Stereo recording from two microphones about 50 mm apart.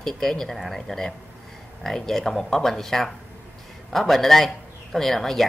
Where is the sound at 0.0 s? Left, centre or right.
Centre.